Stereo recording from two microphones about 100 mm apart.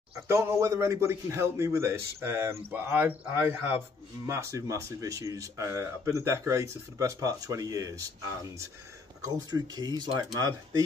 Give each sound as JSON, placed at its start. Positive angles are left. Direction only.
{"t": 0.3, "sound": "a man's voice", "side_deg": -25}
{"t": 4.3, "sound": "speech", "side_deg": -30}
{"t": 9.2, "sound": "speech", "side_deg": -40}